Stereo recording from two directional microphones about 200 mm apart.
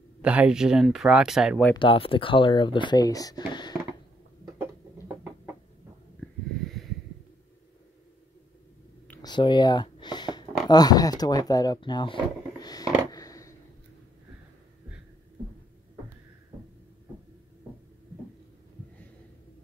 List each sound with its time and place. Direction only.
0.2 s speech: 5° right (ahead or behind)
1.8 s speech: 25° left (ahead or behind)
9.2 s a sound: 20° left (ahead or behind)
10.7 s speech: 20° left (ahead or behind)
17.6 s heart murmur: 10° right (ahead or behind)